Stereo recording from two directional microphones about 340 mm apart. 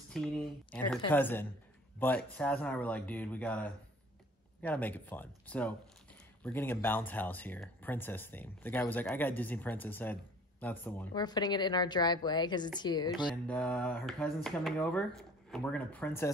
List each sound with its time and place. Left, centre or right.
0.1 s speech: centre